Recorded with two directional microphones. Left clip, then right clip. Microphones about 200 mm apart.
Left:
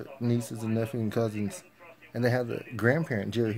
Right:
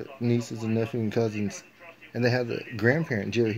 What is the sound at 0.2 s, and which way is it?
Speech, 15° left (ahead or behind).